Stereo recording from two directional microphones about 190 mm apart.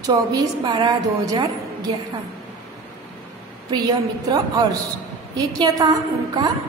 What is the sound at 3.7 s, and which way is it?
A woman's voice, 20° right (ahead or behind).